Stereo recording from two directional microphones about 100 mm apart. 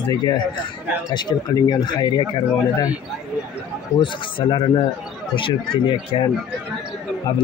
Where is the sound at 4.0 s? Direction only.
55° left (ahead or behind).